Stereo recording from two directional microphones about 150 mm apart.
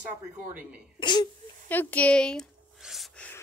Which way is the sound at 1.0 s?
30° left (ahead or behind).